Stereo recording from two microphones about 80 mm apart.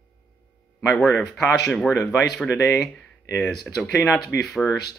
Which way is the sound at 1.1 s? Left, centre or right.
Centre.